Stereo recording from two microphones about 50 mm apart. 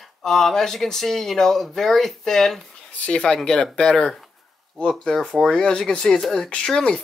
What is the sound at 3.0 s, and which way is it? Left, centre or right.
Speech, centre.